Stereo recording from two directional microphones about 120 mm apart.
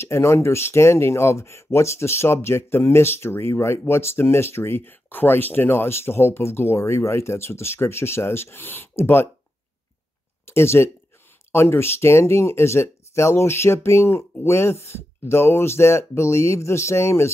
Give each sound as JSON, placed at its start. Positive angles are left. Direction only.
{"t": 0.0, "sound": "speech", "side_deg": 20}
{"t": 10.4, "sound": "speech", "side_deg": 20}